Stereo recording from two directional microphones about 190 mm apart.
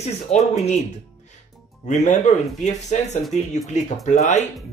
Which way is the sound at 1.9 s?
40° left (ahead or behind).